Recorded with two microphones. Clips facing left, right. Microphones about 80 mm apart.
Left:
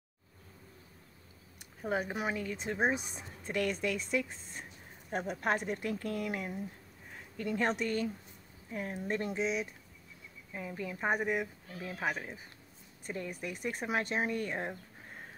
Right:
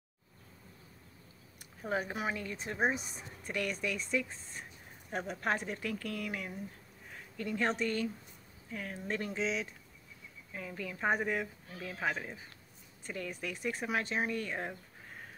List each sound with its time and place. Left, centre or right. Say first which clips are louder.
1.8 s speech: left 1 dB; centre
13.0 s speech: left 1 dB; left